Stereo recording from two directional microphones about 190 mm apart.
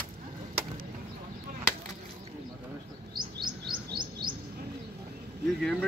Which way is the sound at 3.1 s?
25° right (ahead or behind).